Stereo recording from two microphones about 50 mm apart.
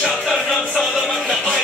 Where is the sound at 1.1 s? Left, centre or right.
Centre.